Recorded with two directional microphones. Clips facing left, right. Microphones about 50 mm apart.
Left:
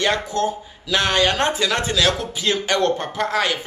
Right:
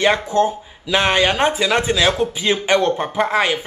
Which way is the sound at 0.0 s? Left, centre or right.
Right.